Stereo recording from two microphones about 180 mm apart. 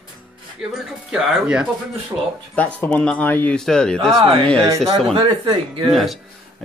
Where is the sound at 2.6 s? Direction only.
10° left (ahead or behind).